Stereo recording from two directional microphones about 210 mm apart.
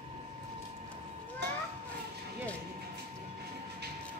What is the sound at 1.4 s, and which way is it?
Children playing, 55° right (ahead or behind).